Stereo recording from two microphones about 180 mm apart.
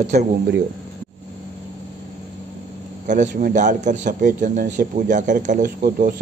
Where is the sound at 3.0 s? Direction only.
45° right (ahead or behind).